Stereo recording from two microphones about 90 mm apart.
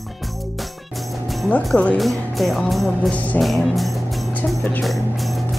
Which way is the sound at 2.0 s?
Centre (ahead or behind).